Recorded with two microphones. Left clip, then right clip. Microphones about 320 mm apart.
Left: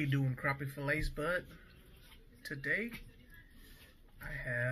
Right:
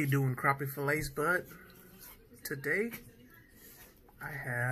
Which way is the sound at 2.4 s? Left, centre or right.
Centre.